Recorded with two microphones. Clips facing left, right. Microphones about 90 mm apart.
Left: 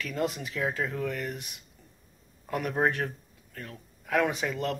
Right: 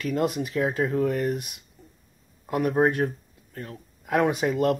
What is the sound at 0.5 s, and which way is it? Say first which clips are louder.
Speech: right 6 dB; 30° right (ahead or behind).